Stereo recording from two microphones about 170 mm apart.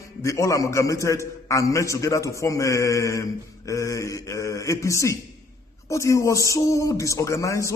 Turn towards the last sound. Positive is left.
turn(degrees=20)  # may be behind; listen again after turning